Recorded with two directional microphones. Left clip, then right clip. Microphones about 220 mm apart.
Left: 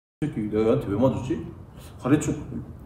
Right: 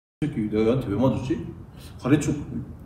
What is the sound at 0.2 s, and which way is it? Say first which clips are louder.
A man's voice: even; 15° left (ahead or behind).